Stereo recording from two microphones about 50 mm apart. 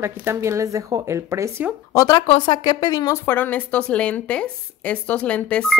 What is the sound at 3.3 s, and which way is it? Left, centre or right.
Speech, left.